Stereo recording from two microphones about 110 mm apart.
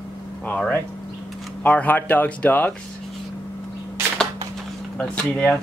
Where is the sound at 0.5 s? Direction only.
10° left (ahead or behind).